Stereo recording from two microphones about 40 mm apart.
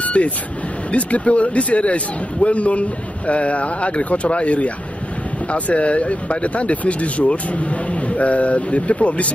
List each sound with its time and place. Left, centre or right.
0.0 s vehicle: left
0.9 s speech: left